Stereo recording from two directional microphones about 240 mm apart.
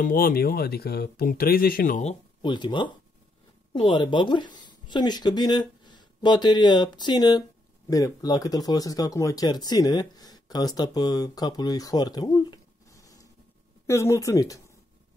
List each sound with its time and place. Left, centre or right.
0.0 s speech: left
2.4 s speech: centre